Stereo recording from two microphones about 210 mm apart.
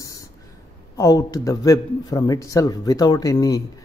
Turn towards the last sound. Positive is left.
turn(degrees=15)  # may be behind; listen again after turning